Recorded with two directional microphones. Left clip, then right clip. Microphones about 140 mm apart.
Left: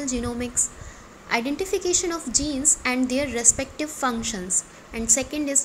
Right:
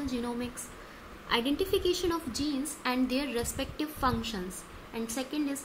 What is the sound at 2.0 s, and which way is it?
A woman's voice, 30° left (ahead or behind).